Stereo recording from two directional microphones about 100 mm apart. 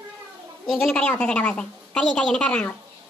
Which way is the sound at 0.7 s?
15° left (ahead or behind).